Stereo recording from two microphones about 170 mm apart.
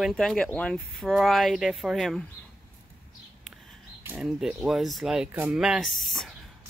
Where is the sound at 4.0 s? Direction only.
5° right (ahead or behind).